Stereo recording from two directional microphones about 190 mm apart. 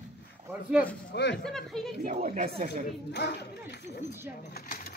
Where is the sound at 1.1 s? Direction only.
65° left (ahead or behind).